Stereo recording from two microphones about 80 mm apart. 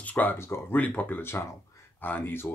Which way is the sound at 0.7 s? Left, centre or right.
Centre.